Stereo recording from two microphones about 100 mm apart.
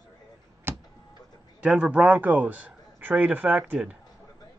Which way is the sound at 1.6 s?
10° right (ahead or behind).